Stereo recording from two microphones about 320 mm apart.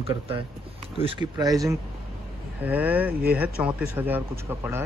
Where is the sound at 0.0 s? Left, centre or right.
Centre.